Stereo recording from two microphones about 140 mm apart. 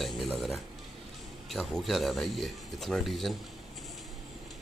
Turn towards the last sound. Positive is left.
turn(degrees=0)  # may be behind; listen again after turning